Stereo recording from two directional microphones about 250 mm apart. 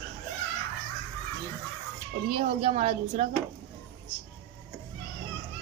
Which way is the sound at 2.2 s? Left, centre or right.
Right.